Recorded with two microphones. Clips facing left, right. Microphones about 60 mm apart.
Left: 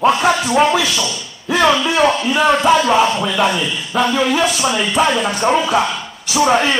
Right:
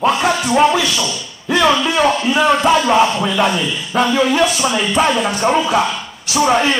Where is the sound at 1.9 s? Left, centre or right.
Centre.